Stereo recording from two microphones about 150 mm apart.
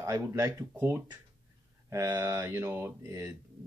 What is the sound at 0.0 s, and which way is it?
Speech, 20° right (ahead or behind).